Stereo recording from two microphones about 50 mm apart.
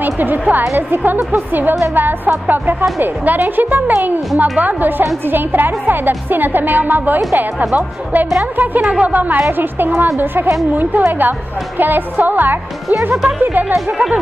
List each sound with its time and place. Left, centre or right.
0.0 s speech: right